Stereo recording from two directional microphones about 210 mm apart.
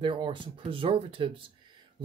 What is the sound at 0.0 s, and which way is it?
Speech, 25° right (ahead or behind).